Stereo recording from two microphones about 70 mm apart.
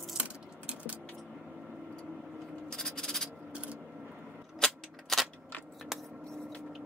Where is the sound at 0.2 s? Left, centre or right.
Centre.